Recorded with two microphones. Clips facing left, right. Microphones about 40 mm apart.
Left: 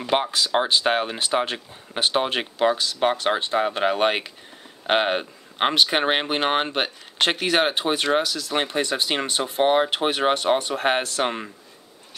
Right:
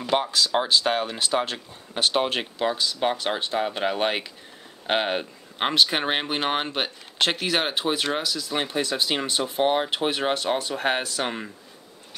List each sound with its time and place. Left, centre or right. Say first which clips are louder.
0.1 s speech: left 1 dB; left